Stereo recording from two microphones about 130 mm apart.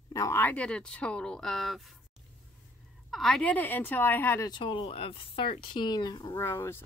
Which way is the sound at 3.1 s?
Centre (ahead or behind).